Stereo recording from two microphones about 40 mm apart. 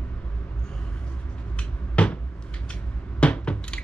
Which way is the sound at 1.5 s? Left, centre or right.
Left.